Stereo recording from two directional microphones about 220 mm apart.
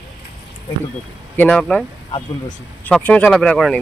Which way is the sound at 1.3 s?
5° left (ahead or behind).